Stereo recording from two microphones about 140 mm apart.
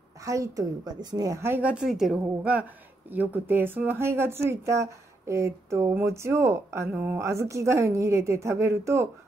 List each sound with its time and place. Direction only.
0.2 s a woman's voice: 25° right (ahead or behind)